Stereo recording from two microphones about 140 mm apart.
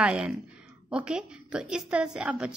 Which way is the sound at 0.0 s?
5° right (ahead or behind).